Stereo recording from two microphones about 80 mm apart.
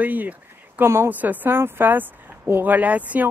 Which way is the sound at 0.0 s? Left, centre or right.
Right.